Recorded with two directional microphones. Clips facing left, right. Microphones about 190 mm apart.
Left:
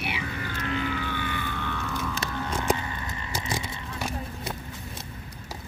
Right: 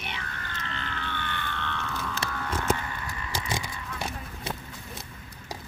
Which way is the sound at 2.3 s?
15° left (ahead or behind).